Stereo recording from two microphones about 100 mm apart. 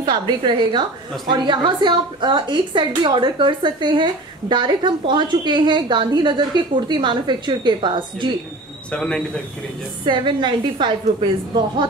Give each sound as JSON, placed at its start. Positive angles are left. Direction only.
{"t": 0.4, "sound": "a woman's voice", "side_deg": -50}
{"t": 8.9, "sound": "speech", "side_deg": 10}
{"t": 10.0, "sound": "a woman's voice", "side_deg": -50}